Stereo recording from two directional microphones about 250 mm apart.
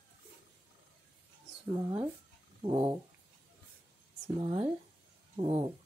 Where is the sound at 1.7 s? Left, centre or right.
Centre.